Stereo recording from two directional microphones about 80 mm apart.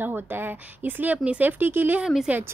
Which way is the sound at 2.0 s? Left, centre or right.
Centre.